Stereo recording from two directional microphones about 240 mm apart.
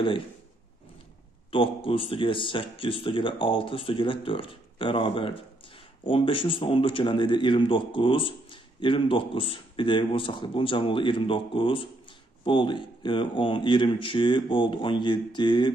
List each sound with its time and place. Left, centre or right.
1.5 s speech: left